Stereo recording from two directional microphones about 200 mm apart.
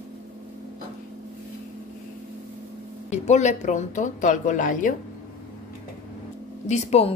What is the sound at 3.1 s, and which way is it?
Speech, 35° left (ahead or behind).